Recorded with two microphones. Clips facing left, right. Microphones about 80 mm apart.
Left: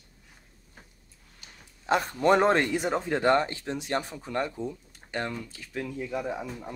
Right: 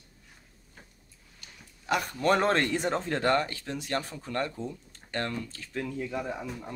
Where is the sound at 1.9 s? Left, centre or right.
Left.